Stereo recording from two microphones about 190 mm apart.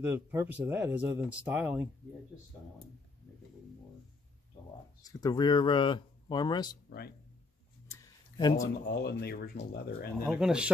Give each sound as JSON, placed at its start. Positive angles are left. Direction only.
{"t": 0.0, "sound": "speech", "side_deg": -10}
{"t": 5.0, "sound": "speech", "side_deg": 20}
{"t": 7.9, "sound": "a sound", "side_deg": 20}
{"t": 8.8, "sound": "speech", "side_deg": 60}
{"t": 10.2, "sound": "speech", "side_deg": -5}